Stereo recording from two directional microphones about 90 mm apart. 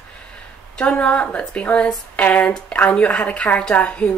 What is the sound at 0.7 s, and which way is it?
Speech, 15° left (ahead or behind).